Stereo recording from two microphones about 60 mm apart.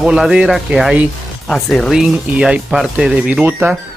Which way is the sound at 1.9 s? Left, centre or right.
Centre.